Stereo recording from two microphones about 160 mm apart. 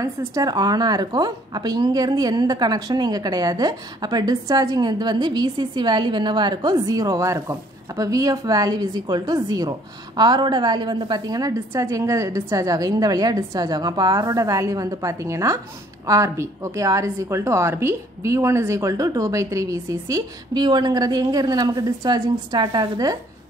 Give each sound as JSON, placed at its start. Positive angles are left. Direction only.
{"t": 0.0, "sound": "a woman's voice", "side_deg": -20}